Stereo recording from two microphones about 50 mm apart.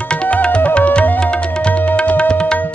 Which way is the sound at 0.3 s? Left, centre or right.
Left.